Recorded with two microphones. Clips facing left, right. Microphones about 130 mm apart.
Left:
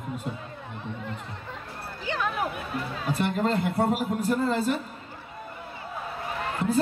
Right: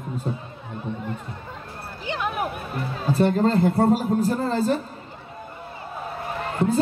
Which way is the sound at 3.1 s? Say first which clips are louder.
Right 6 dB; 35° right (ahead or behind).